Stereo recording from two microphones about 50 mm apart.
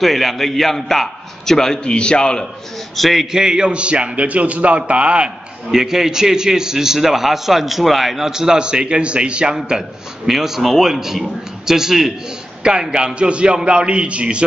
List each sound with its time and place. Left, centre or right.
0.0 s a man's voice: centre
3.0 s a man's voice: centre; by 5.3 s right
5.7 s a man's voice: centre
9.7 s a man's voice: centre